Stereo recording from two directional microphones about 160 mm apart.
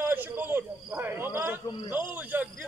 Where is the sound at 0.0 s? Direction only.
15° right (ahead or behind).